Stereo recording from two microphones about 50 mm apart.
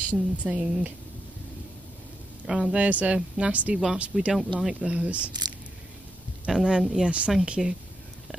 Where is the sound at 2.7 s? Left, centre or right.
Right.